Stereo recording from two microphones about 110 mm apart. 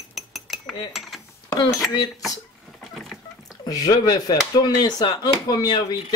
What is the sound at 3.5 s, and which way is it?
Speech, 35° left (ahead or behind).